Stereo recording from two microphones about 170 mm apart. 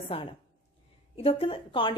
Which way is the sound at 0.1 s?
35° left (ahead or behind).